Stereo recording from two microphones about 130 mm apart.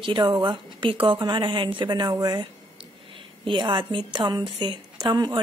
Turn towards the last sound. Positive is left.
turn(degrees=-30)  # may be behind; listen again after turning